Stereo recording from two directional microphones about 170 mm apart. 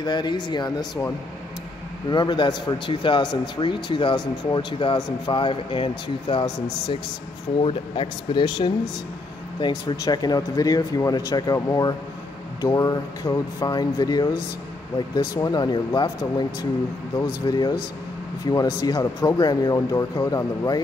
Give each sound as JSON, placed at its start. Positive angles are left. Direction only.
{"t": 0.0, "sound": "speech", "side_deg": 25}